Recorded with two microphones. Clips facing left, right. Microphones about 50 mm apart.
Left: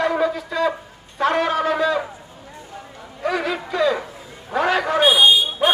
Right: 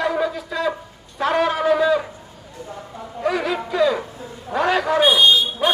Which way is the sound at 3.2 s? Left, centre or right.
Centre.